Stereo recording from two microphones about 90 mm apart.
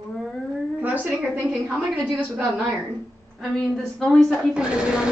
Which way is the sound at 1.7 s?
10° left (ahead or behind).